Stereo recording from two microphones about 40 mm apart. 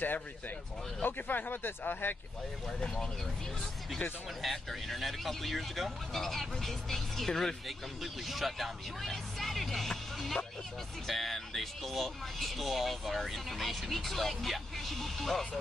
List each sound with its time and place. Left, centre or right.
1.0 s speech: left
2.8 s speech: centre
4.4 s speech: centre
8.0 s speech: centre